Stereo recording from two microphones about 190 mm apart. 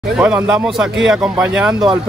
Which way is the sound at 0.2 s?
10° right (ahead or behind).